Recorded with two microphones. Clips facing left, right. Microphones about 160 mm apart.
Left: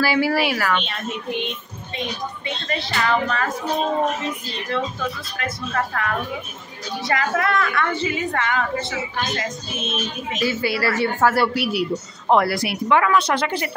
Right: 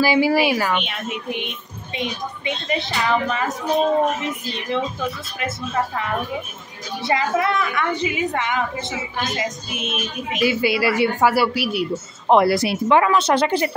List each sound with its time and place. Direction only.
0.0 s a woman's voice: 15° right (ahead or behind)
5.4 s a woman's voice: 20° right (ahead or behind)
11.4 s speech: centre (ahead or behind)
12.3 s speech: 20° right (ahead or behind)